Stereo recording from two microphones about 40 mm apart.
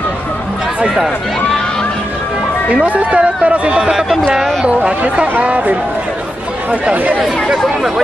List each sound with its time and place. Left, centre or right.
2.9 s speech: right
7.2 s speech: centre